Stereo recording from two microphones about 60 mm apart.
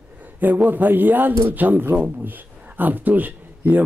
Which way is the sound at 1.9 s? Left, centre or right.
Right.